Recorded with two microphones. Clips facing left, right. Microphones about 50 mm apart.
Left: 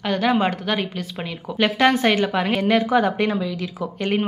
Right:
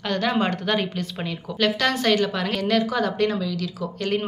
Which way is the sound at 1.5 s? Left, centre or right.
Left.